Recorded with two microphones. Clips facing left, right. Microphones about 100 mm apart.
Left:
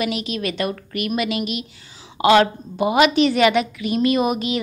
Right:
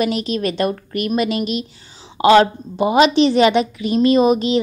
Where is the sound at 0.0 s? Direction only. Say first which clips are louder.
Right 4 dB; 35° right (ahead or behind).